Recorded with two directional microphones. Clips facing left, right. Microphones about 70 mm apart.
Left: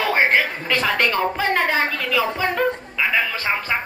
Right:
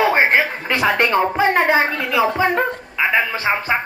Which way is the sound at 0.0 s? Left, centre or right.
Right.